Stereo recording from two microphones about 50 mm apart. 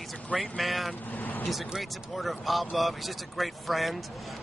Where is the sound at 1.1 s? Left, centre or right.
Left.